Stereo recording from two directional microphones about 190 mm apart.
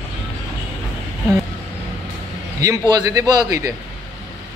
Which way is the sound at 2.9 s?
20° right (ahead or behind).